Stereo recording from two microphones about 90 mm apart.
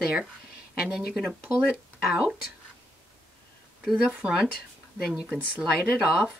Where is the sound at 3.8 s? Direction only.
5° right (ahead or behind).